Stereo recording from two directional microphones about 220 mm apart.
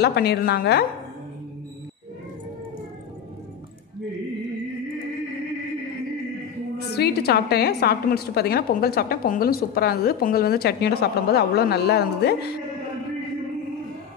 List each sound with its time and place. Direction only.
0.0 s a woman's voice: 45° left (ahead or behind)
6.9 s a woman's voice: 45° left (ahead or behind)